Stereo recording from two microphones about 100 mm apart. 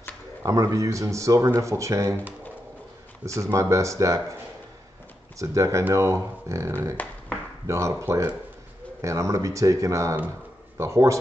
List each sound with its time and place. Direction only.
0.4 s speech: 35° right (ahead or behind)
3.3 s speech: 30° right (ahead or behind)
5.4 s speech: 30° right (ahead or behind)
7.0 s speech: 15° left (ahead or behind)
7.6 s speech: 30° right (ahead or behind)